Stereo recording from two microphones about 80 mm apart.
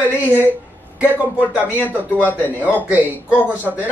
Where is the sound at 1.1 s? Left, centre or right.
Right.